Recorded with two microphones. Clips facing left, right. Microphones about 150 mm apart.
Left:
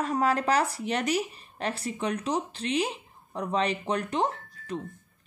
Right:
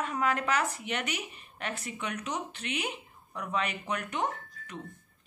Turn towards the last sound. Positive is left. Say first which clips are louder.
# left 4 dB
turn(degrees=30)  # may be behind; listen again after turning